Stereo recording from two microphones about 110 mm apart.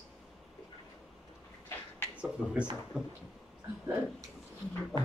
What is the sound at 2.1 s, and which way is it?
Speech, 10° right (ahead or behind).